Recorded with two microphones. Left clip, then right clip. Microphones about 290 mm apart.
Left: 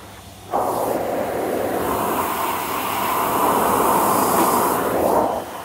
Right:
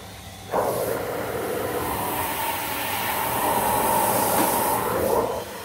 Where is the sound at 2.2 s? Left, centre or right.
Centre.